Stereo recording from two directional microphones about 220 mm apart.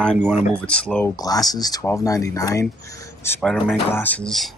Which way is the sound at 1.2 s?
15° left (ahead or behind).